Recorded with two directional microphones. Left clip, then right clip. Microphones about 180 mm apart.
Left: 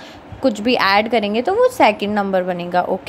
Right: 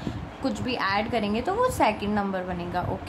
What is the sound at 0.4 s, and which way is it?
A woman's voice, 30° left (ahead or behind).